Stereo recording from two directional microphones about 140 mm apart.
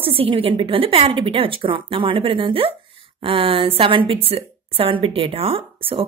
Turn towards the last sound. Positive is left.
turn(degrees=-40)  # may be behind; listen again after turning